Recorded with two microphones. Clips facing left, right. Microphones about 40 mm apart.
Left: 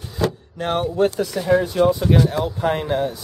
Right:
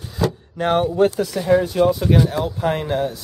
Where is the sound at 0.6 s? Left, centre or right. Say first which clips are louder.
Right 3 dB; centre.